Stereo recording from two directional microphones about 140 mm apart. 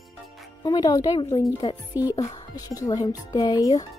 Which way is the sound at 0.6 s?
30° left (ahead or behind).